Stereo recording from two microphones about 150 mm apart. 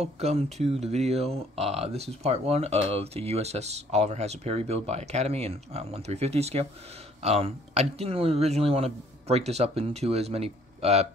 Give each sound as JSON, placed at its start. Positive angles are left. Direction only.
{"t": 0.0, "sound": "speech", "side_deg": -45}